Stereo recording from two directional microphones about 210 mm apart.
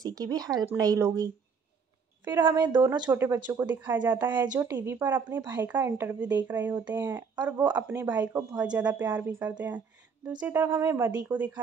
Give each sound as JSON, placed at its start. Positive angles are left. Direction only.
{"t": 0.0, "sound": "a woman's voice", "side_deg": -15}
{"t": 2.4, "sound": "a woman's voice", "side_deg": -20}
{"t": 6.9, "sound": "a woman's voice", "side_deg": -20}